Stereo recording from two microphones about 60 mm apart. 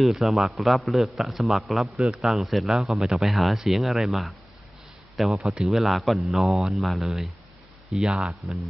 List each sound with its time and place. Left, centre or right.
0.0 s speech: centre
8.0 s speech: centre
8.3 s speech: centre